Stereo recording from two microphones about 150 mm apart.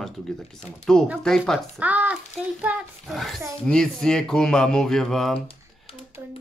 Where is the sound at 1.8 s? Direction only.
10° right (ahead or behind).